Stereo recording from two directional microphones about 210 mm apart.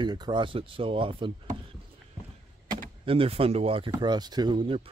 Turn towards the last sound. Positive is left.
turn(degrees=-20)  # may be behind; listen again after turning